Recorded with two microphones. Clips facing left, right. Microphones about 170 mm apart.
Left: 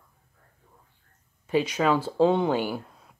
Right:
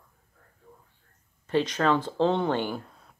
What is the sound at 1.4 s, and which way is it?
Speech, 10° left (ahead or behind).